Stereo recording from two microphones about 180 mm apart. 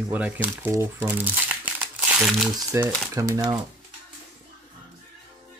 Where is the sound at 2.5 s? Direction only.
15° right (ahead or behind).